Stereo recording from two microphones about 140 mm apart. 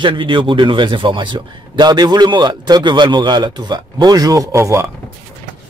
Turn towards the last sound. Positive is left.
turn(degrees=-20)  # may be behind; listen again after turning